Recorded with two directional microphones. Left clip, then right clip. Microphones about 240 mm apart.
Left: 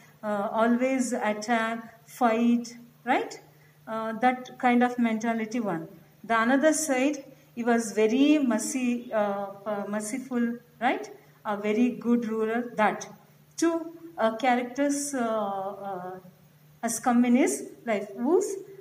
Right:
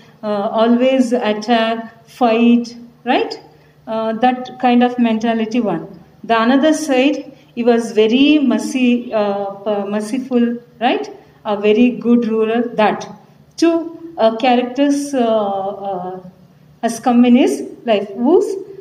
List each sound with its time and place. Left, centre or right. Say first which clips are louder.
0.2 s a sound: right 10 dB; left
0.6 s a woman's voice: right 13 dB; left
7.5 s a woman's voice: right 12 dB; left
15.3 s speech: right 12 dB; left
16.8 s a woman's voice: right 11 dB; left